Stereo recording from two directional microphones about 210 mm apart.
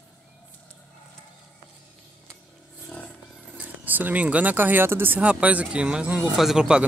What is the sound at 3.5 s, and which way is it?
Speech, 10° right (ahead or behind).